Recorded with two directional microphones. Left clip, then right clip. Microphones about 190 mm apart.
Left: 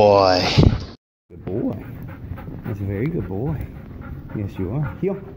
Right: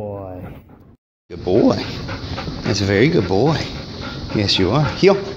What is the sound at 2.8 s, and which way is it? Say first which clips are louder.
Speech: right 12 dB; 90° right.